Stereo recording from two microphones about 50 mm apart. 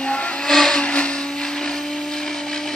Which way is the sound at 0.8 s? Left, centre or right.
Left.